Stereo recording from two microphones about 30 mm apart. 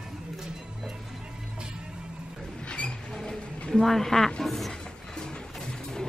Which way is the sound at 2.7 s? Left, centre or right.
Left.